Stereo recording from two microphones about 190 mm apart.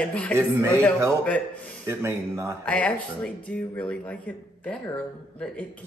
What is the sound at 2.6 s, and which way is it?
Speech, 5° left (ahead or behind).